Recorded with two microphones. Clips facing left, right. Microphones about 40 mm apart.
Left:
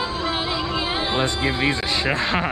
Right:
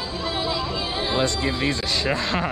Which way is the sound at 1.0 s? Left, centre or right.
Left.